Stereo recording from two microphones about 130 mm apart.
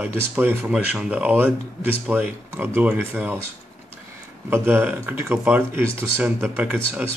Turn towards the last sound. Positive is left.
turn(degrees=-10)  # may be behind; listen again after turning